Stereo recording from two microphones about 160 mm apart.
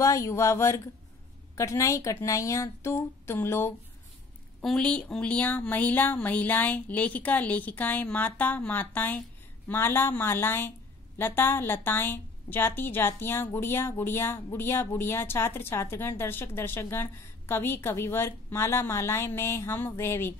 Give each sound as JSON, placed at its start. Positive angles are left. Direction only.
{"t": 0.0, "sound": "a woman's voice", "side_deg": 20}
{"t": 4.6, "sound": "a woman's voice", "side_deg": 5}